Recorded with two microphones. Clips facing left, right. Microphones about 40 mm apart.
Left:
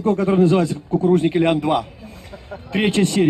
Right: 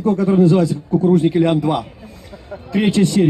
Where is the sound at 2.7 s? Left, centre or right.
Left.